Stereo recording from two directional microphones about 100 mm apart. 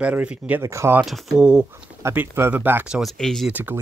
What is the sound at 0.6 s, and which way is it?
Speech, 30° right (ahead or behind).